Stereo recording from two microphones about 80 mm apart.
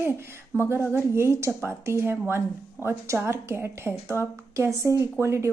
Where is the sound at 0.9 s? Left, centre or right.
Right.